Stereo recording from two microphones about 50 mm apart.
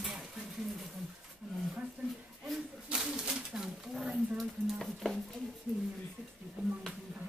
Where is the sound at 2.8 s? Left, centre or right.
Centre.